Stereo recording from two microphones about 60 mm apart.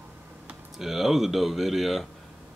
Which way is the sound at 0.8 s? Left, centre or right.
Centre.